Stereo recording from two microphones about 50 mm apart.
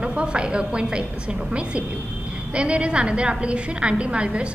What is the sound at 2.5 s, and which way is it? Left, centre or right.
A woman's voice, right.